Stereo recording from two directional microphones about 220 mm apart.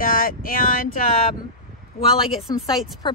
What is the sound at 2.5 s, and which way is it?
Speech, 15° left (ahead or behind).